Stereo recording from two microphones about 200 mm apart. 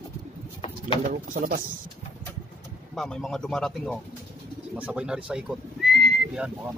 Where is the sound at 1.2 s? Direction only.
45° right (ahead or behind).